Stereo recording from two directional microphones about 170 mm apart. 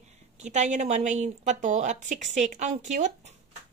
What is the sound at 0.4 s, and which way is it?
Speech, 45° right (ahead or behind).